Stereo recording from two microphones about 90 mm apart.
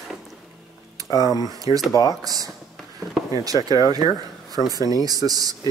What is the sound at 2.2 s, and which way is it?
Speech, 45° right (ahead or behind).